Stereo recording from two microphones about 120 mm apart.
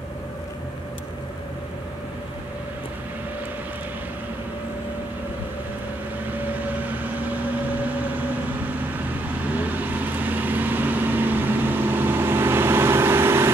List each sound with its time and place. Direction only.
6.6 s vehicle: 15° right (ahead or behind)
9.5 s vehicle: 15° right (ahead or behind)